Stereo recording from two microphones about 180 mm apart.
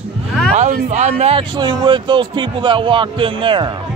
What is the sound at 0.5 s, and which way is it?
Speech, 40° right (ahead or behind).